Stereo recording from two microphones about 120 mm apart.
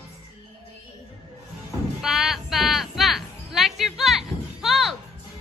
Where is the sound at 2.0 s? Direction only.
5° right (ahead or behind).